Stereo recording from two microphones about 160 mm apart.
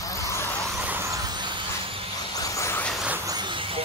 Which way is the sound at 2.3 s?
20° left (ahead or behind).